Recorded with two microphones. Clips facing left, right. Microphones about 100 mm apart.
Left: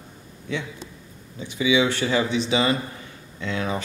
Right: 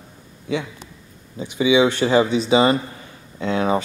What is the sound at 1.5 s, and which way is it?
Speech, 40° right (ahead or behind).